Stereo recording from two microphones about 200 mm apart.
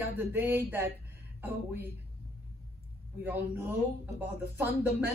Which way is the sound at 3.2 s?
10° right (ahead or behind).